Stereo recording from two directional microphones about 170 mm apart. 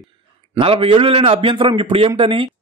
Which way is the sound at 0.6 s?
30° right (ahead or behind).